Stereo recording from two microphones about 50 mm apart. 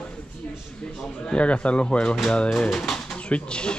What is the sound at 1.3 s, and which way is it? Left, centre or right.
Speech, left.